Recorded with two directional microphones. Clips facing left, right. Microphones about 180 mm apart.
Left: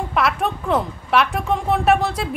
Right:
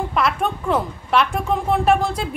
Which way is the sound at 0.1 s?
Centre (ahead or behind).